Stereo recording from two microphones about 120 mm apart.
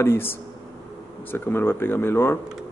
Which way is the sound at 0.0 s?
20° left (ahead or behind).